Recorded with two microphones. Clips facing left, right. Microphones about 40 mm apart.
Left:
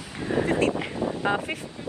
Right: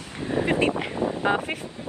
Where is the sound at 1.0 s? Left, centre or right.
Right.